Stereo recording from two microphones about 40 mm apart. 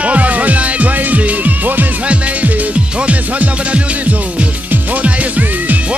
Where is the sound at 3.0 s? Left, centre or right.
Right.